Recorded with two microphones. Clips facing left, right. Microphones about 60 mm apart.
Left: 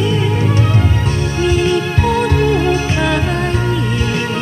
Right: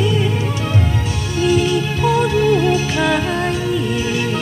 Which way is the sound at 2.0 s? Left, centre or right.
Left.